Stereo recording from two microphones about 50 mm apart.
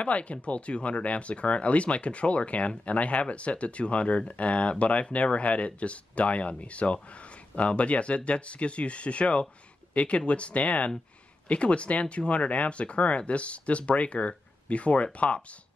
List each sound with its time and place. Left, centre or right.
0.0 s speech: left